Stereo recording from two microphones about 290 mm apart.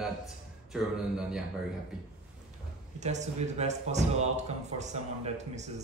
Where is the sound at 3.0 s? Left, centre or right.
Right.